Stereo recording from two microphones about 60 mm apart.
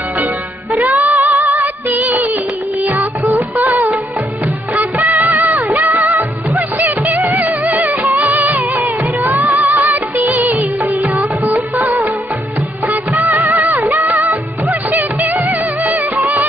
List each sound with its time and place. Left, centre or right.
0.8 s music: right
1.9 s music of bollywood: right
3.3 s music: right
3.6 s music: right
4.7 s music of bollywood: right
6.8 s music: right
9.8 s music of bollywood: right
11.4 s music of bollywood: right
11.8 s music of bollywood: right
14.9 s music: right